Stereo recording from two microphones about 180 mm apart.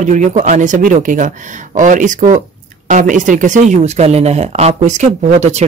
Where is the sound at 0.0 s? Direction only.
45° right (ahead or behind).